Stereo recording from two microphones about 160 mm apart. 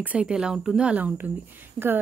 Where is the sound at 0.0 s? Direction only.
10° right (ahead or behind).